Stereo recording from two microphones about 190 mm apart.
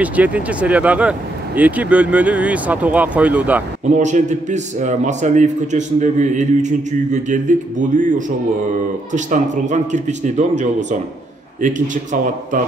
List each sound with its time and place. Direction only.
0.0 s speech: 10° right (ahead or behind)
3.9 s a man's voice: 40° right (ahead or behind)
11.6 s a man's voice: 40° right (ahead or behind)